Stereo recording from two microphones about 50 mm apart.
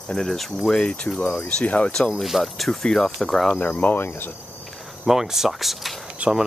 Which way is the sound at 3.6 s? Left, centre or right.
Left.